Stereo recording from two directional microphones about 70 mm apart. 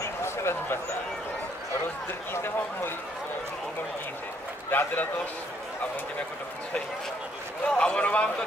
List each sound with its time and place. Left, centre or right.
0.0 s a sound: left
2.3 s a man's voice: left
4.6 s a man's voice: left
7.6 s a man's voice: centre